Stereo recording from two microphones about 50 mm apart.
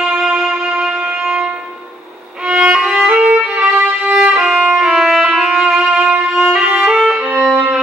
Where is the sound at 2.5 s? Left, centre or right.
Right.